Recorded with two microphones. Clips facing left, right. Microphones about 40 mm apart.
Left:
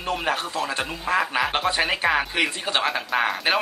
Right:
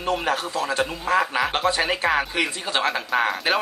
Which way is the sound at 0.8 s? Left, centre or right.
Centre.